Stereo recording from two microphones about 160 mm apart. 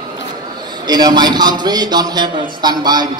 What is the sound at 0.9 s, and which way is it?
A man's voice, 25° right (ahead or behind).